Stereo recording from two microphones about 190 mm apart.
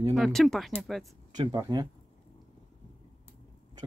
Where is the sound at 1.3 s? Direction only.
20° right (ahead or behind).